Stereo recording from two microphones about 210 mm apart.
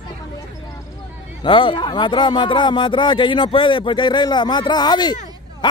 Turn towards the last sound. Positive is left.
turn(degrees=20)  # may be behind; listen again after turning